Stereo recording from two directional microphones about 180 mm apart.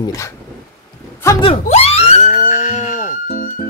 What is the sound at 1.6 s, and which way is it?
Music, 35° left (ahead or behind).